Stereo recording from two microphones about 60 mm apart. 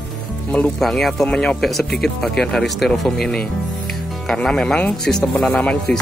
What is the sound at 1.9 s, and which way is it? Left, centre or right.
Speech, centre.